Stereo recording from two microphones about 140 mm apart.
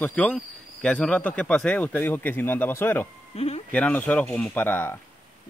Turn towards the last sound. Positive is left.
turn(degrees=15)  # may be behind; listen again after turning